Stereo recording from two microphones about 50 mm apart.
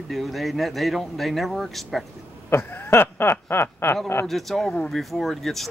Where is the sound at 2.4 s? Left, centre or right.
Left.